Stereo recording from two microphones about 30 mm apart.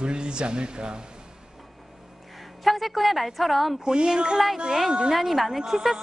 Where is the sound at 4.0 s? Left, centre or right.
Right.